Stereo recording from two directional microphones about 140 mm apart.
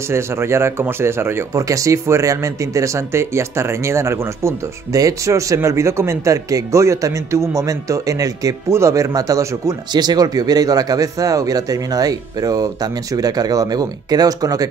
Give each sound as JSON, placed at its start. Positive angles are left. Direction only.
{"t": 0.1, "sound": "speech", "side_deg": -20}